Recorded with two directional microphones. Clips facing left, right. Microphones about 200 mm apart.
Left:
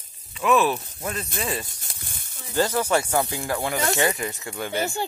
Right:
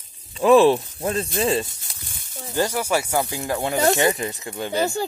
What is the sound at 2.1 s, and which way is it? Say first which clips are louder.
Sizzle: left 1 dB; 55° left (ahead or behind).